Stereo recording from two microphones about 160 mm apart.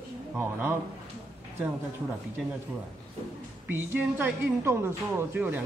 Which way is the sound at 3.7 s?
10° right (ahead or behind).